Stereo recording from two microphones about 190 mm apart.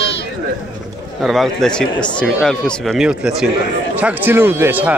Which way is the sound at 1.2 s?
Centre (ahead or behind).